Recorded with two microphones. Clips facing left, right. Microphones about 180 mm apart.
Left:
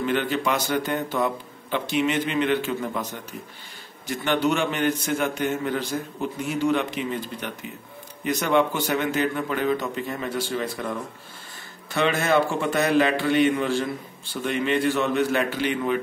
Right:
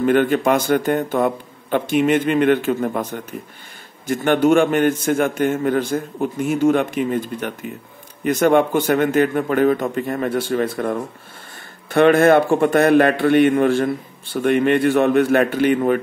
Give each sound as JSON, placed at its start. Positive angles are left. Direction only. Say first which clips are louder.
{"t": 0.0, "sound": "a man's voice", "louder": "right 8 dB", "side_deg": -50}